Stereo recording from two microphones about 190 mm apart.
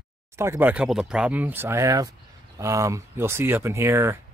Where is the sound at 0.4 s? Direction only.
10° right (ahead or behind).